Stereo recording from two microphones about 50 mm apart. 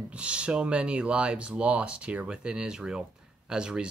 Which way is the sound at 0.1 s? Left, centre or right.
Right.